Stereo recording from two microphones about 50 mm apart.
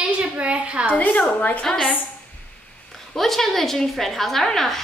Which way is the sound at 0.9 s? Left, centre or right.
Left.